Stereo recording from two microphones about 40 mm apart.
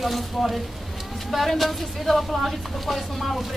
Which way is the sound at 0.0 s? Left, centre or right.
Centre.